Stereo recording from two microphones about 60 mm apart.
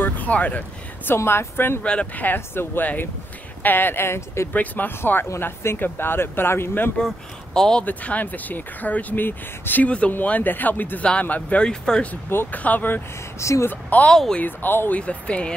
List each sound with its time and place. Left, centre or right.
0.0 s speech: left
1.0 s speech: left
1.8 s speech: centre
2.1 s speech: left
4.5 s speech: left
7.0 s speech: centre
7.8 s speech: left
9.8 s speech: centre
12.4 s speech: left
13.4 s speech: left
13.7 s speech: left
15.0 s speech: left